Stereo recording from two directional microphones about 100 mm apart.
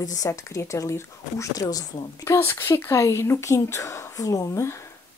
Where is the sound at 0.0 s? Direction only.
35° left (ahead or behind).